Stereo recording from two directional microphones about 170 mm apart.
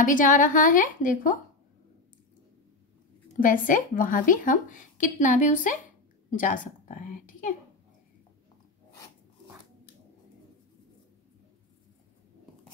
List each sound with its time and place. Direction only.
0.0 s speech: 50° left (ahead or behind)
3.3 s a woman's voice: 50° left (ahead or behind)